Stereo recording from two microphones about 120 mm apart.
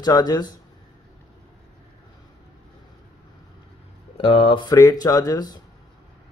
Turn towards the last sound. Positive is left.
turn(degrees=30)  # may be behind; listen again after turning